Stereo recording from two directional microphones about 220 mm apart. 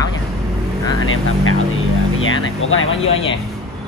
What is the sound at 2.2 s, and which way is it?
Speech, 65° left (ahead or behind).